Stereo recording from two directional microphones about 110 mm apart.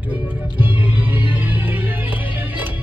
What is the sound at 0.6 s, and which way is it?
Music, 15° right (ahead or behind).